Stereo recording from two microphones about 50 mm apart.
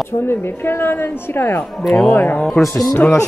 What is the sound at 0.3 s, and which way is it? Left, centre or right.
Speech, left.